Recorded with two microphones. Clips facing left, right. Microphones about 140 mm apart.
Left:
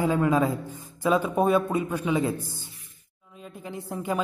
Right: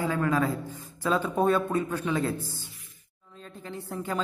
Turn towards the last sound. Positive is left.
turn(degrees=15)  # may be behind; listen again after turning